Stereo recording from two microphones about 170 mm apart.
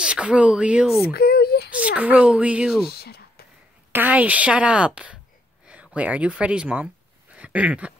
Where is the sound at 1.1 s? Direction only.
70° left (ahead or behind).